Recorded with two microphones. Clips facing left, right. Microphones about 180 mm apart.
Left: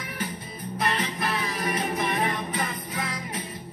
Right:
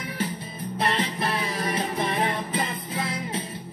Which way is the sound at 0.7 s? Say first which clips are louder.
Right 2 dB; 25° right (ahead or behind).